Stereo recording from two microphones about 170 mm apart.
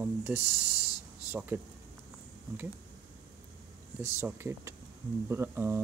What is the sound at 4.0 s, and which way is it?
Speech, 15° right (ahead or behind).